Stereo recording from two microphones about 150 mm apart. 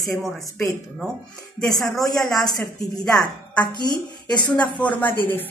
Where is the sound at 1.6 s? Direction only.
25° left (ahead or behind).